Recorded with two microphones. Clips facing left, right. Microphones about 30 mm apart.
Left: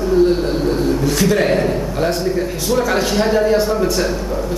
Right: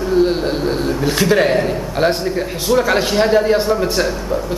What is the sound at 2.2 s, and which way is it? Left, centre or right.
A man's voice, centre.